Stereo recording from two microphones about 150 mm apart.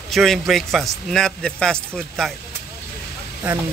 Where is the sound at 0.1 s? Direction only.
Centre (ahead or behind).